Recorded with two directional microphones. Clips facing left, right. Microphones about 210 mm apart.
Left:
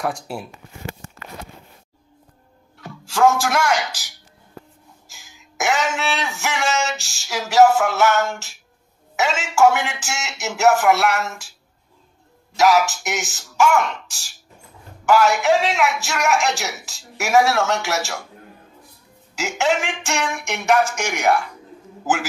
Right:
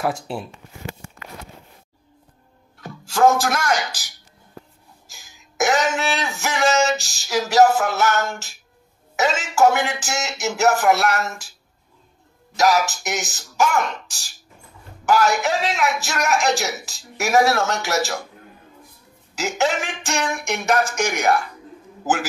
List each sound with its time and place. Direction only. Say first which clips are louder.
0.0 s speech: right 1 dB; centre (ahead or behind)
5.1 s a sound: even; 40° right (ahead or behind)
9.1 s speech: even; 40° right (ahead or behind)
12.5 s speech: left 2 dB; 40° right (ahead or behind)
19.3 s speech: left 1 dB; 40° right (ahead or behind)